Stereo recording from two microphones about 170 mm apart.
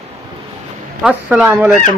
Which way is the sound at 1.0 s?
5° right (ahead or behind).